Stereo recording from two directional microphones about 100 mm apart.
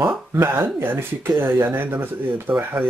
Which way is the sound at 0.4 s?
20° right (ahead or behind).